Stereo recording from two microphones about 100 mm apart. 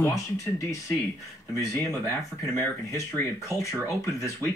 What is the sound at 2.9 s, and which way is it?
Speech, 30° left (ahead or behind).